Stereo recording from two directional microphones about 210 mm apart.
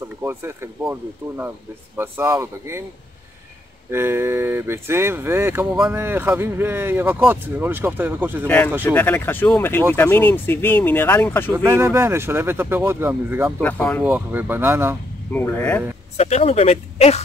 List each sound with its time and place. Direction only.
0.2 s speech: 10° right (ahead or behind)
3.9 s speech: 10° right (ahead or behind)
8.5 s speech: 5° left (ahead or behind)
11.5 s speech: 10° right (ahead or behind)
13.6 s speech: 5° left (ahead or behind)
14.0 s speech: 10° right (ahead or behind)
15.3 s speech: 10° left (ahead or behind)
16.2 s speech: 30° left (ahead or behind)